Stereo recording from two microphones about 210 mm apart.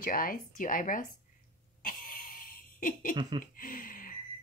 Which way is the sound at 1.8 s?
40° left (ahead or behind).